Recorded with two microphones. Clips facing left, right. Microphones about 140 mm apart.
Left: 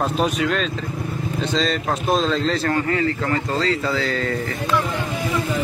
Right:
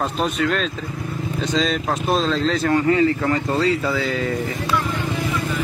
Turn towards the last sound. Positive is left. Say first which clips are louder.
# even
turn(degrees=-5)  # may be behind; listen again after turning